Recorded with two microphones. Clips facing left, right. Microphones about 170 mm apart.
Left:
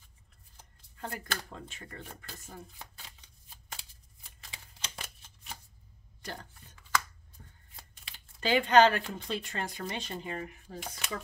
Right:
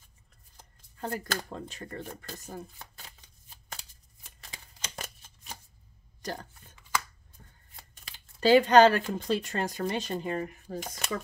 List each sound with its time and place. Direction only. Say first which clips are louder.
1.0 s speech: right 5 dB; 40° right (ahead or behind)
4.4 s shuffling cards: right 2 dB; 40° right (ahead or behind)
7.9 s speech: right 1 dB; 40° right (ahead or behind)